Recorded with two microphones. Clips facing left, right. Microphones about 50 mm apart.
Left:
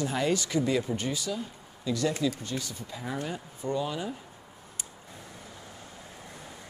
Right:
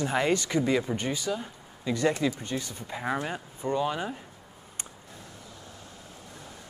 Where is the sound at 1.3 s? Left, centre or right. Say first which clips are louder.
Right 2 dB; right.